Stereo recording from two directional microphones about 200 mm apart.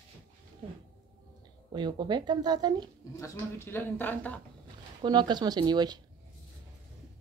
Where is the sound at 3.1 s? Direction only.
15° left (ahead or behind).